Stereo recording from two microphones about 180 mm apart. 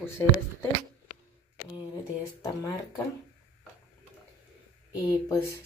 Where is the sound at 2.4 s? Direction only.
20° left (ahead or behind).